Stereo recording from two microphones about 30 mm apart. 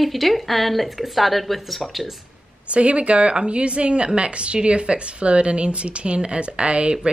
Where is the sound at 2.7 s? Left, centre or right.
Right.